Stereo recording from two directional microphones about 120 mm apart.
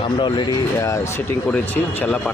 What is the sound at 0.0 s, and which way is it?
Speech, 40° left (ahead or behind).